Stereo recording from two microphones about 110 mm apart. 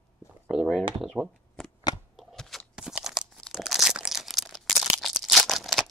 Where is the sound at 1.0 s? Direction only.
Centre (ahead or behind).